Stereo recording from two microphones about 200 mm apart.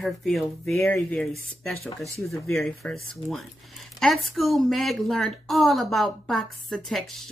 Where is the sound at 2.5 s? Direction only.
5° left (ahead or behind).